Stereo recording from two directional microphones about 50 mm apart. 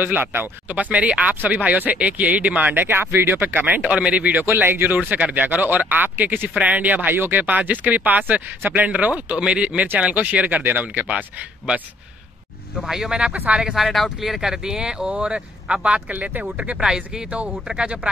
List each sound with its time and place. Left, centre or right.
0.0 s speech: right
0.7 s speech: right
2.7 s speech: right
3.6 s speech: right
4.6 s speech: right
10.6 s speech: right
11.1 s speech: right
12.8 s speech: centre
13.7 s speech: centre; by 16.0 s right
16.1 s speech: right
16.7 s speech: centre